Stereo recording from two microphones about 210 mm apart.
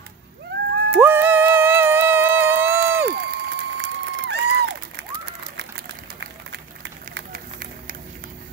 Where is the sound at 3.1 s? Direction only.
50° right (ahead or behind).